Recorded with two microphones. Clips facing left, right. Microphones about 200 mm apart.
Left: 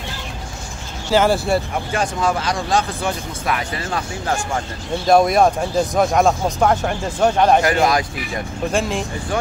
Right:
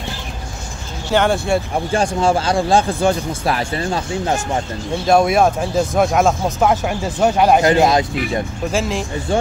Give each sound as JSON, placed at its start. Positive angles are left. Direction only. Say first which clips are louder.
{"t": 1.1, "sound": "speech", "louder": "even", "side_deg": 5}
{"t": 1.9, "sound": "speech", "louder": "right 5 dB", "side_deg": -30}
{"t": 5.0, "sound": "speech", "louder": "even", "side_deg": 0}
{"t": 7.6, "sound": "speech", "louder": "right 4 dB", "side_deg": -25}
{"t": 8.7, "sound": "speech", "louder": "right 1 dB", "side_deg": 0}